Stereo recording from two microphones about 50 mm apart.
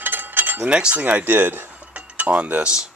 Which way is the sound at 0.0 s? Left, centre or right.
Right.